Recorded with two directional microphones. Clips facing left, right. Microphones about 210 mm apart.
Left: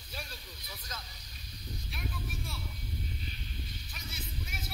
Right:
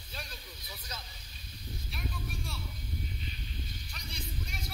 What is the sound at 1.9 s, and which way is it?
Vehicle, centre (ahead or behind).